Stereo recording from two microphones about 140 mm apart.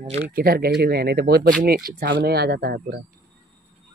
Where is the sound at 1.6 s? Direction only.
90° right.